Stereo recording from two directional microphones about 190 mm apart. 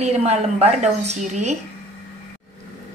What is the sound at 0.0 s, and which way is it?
A woman's voice, 35° right (ahead or behind).